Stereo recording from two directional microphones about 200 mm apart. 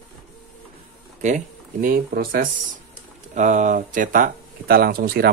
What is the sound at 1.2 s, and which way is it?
Speech, 40° right (ahead or behind).